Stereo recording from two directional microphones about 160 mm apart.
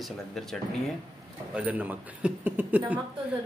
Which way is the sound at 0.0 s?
Centre (ahead or behind).